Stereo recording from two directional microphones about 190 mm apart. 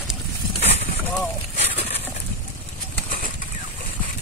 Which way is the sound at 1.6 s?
30° left (ahead or behind).